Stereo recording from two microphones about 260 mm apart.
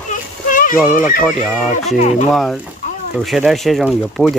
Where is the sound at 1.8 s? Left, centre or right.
Left.